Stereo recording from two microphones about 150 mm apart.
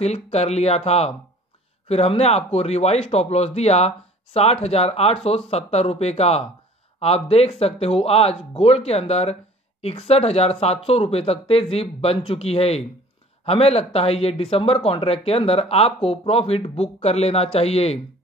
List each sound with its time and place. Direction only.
0.0 s speech: 45° left (ahead or behind)